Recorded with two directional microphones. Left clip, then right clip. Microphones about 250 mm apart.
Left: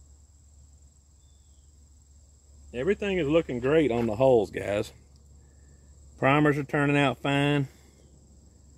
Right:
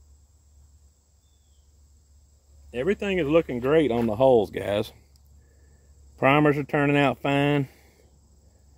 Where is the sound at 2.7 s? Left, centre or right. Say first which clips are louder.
Right 2 dB; right.